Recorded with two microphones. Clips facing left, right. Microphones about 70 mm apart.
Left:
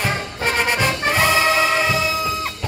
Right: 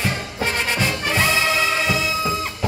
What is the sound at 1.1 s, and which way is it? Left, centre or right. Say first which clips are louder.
Music: left 2 dB; left.